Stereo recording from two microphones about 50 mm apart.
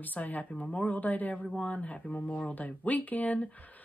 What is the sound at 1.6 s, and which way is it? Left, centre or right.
Speech, left.